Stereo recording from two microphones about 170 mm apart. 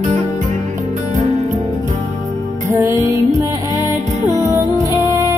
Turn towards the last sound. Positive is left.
turn(degrees=-20)  # may be behind; listen again after turning